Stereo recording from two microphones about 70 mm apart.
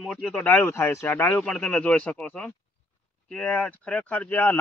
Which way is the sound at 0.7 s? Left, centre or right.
Left.